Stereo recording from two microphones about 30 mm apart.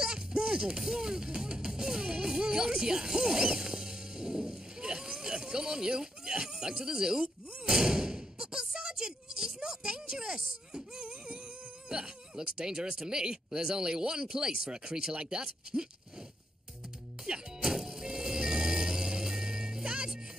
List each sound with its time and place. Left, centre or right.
0.0 s music: right
11.9 s speech: right
17.2 s vehicle: right
19.8 s music: right